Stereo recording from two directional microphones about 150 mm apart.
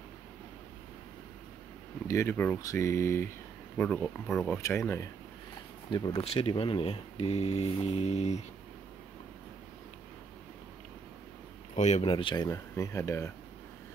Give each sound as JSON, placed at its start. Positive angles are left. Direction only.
{"t": 2.0, "sound": "speech", "side_deg": 20}
{"t": 4.6, "sound": "speech", "side_deg": 20}
{"t": 5.9, "sound": "speech", "side_deg": 30}
{"t": 11.7, "sound": "speech", "side_deg": 50}
{"t": 12.0, "sound": "speech", "side_deg": 35}
{"t": 12.4, "sound": "speech", "side_deg": 20}